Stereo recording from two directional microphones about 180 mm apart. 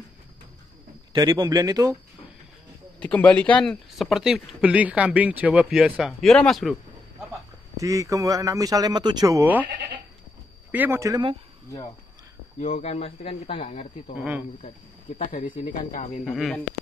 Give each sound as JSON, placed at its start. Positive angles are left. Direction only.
{"t": 1.1, "sound": "speech", "side_deg": -25}
{"t": 3.0, "sound": "speech", "side_deg": 5}
{"t": 7.7, "sound": "a man's voice", "side_deg": -15}
{"t": 10.7, "sound": "a man's voice", "side_deg": -10}
{"t": 12.5, "sound": "speech", "side_deg": 35}
{"t": 14.1, "sound": "a man's voice", "side_deg": -10}
{"t": 15.1, "sound": "speech", "side_deg": 45}
{"t": 16.3, "sound": "speech", "side_deg": 0}